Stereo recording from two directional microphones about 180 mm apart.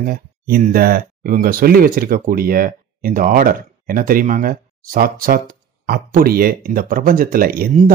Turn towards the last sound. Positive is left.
turn(degrees=-50)  # may be behind; listen again after turning